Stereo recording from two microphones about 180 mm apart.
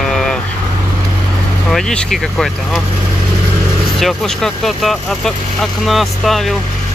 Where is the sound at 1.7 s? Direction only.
5° left (ahead or behind).